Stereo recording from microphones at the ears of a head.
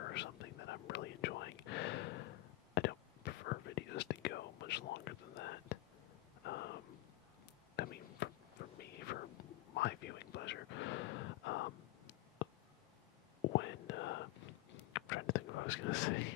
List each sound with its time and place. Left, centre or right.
0.0 s whispering: left
6.4 s thunder: left
7.7 s whispering: left